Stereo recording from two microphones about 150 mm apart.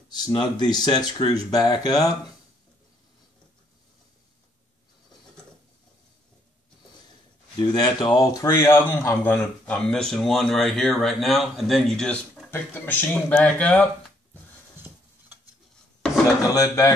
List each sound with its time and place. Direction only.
0.3 s speech: 30° left (ahead or behind)
7.6 s speech: 25° left (ahead or behind); by 12.1 s centre (ahead or behind)
12.1 s speech: 10° left (ahead or behind)
16.5 s speech: 20° left (ahead or behind)